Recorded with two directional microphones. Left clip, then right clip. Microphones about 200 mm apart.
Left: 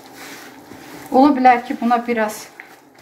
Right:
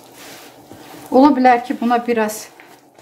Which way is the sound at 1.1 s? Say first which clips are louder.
Right 1 dB; 35° right (ahead or behind).